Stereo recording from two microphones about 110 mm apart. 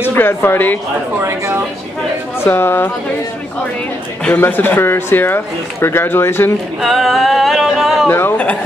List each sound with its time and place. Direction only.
0.1 s speech: 20° left (ahead or behind)
1.2 s speech: 25° right (ahead or behind)
2.4 s speech: 20° left (ahead or behind)
4.4 s speech: 20° left (ahead or behind)
6.8 s a sound: centre (ahead or behind)
8.1 s a man's voice: 15° left (ahead or behind)